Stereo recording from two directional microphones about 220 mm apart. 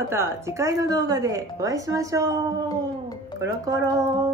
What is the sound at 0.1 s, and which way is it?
A woman's voice, 10° right (ahead or behind).